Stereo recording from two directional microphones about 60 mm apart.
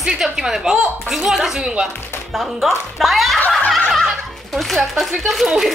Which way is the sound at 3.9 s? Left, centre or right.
Centre.